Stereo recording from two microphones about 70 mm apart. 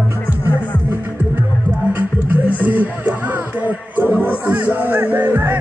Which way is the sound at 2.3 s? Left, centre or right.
Right.